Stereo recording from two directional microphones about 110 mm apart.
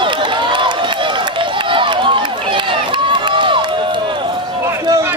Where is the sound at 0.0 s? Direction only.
50° right (ahead or behind).